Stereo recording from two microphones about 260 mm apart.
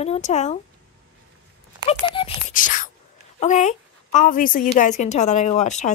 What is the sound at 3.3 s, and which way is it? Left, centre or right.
A woman's voice, left.